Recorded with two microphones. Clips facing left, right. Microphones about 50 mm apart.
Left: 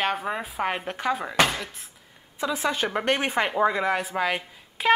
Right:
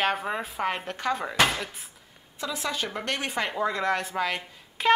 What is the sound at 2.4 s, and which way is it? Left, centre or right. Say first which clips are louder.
A woman's voice: left 5 dB; left.